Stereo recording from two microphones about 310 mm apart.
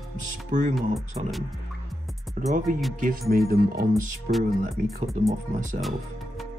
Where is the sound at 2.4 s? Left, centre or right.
Right.